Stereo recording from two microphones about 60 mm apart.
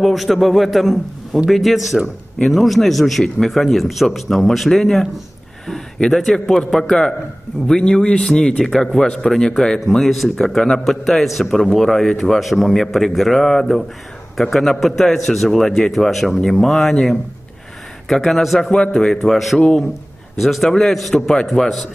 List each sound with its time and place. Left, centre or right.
0.0 s a man's voice: centre